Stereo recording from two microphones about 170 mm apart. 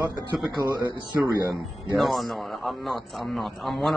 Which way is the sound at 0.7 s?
20° right (ahead or behind).